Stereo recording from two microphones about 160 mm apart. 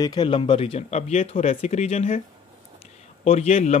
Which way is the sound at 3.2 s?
40° left (ahead or behind).